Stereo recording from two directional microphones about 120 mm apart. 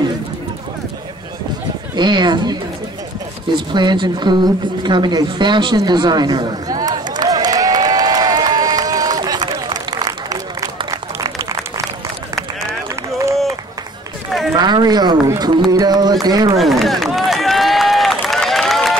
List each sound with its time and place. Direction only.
2.0 s speech: 40° right (ahead or behind)
3.5 s a sound: 40° right (ahead or behind)
10.9 s applause: 30° right (ahead or behind)
14.5 s speech: 35° right (ahead or behind)
15.7 s a sound: 35° right (ahead or behind)
16.5 s run: centre (ahead or behind)